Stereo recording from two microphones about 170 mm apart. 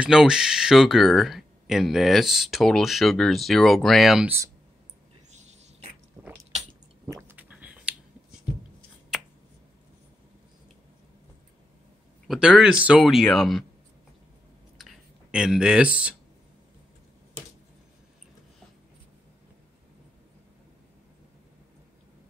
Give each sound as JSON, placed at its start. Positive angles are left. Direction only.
{"t": 0.0, "sound": "speech", "side_deg": -5}
{"t": 5.3, "sound": "a sound", "side_deg": -40}
{"t": 6.2, "sound": "biting", "side_deg": -20}
{"t": 7.2, "sound": "a sound", "side_deg": -10}
{"t": 12.3, "sound": "speech", "side_deg": -5}
{"t": 15.3, "sound": "speech", "side_deg": -5}